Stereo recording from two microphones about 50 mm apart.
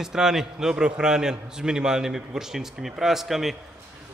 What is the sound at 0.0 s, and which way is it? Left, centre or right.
A man's voice, centre.